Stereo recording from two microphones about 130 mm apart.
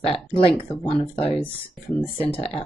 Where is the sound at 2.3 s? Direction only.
45° left (ahead or behind).